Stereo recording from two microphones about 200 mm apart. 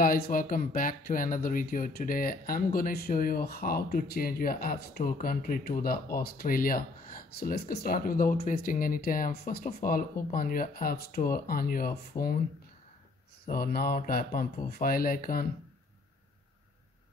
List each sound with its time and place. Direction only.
0.0 s speech: 45° left (ahead or behind)
13.5 s speech: 50° left (ahead or behind)